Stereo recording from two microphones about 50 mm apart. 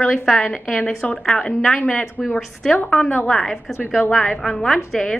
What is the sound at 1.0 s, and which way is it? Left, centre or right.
Speech, left.